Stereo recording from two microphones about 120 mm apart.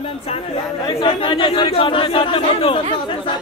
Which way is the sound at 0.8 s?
45° left (ahead or behind).